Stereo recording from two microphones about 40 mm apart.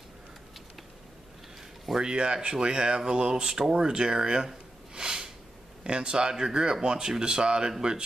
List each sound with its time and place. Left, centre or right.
2.0 s speech: right
4.9 s a sound: centre
5.9 s speech: right